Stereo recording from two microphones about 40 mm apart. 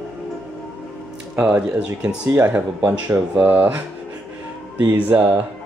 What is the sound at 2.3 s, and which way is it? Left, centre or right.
Speech, right.